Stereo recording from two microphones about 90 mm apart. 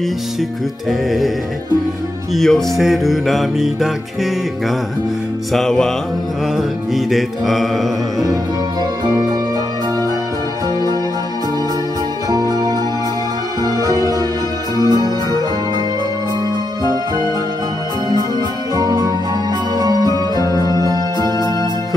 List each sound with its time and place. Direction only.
0.4 s music: centre (ahead or behind)
2.3 s music: 5° left (ahead or behind)
9.0 s music: 50° right (ahead or behind)
12.3 s music: 45° right (ahead or behind)
18.8 s music: 40° right (ahead or behind)